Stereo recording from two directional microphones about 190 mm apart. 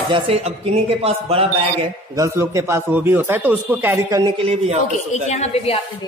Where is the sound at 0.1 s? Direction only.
30° right (ahead or behind).